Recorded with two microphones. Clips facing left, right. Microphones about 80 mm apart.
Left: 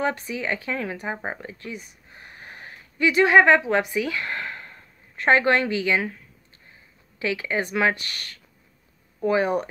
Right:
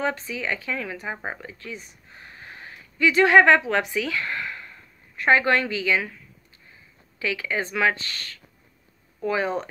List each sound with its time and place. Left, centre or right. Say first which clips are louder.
0.0 s a woman's voice: left 1 dB; left
2.1 s a sound: even; left
5.2 s a woman's voice: left 1 dB; left
7.2 s speech: left 2 dB; left
9.2 s speech: left 3 dB; left